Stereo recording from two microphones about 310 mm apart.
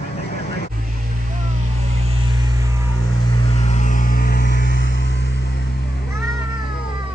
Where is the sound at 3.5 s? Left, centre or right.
Left.